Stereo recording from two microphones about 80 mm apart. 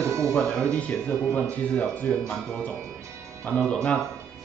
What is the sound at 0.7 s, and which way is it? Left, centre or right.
Speech, centre.